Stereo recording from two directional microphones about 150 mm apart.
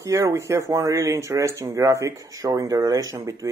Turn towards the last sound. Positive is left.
turn(degrees=-20)  # may be behind; listen again after turning